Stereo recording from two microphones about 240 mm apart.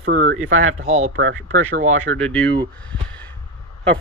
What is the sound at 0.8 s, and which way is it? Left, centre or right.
Speech, right.